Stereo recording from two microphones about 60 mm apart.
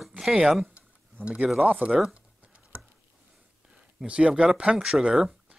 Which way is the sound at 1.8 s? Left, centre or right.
Right.